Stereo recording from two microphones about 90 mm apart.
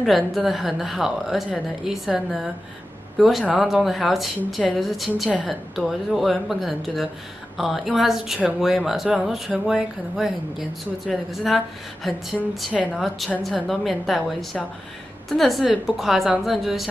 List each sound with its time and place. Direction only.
0.0 s speech: centre (ahead or behind)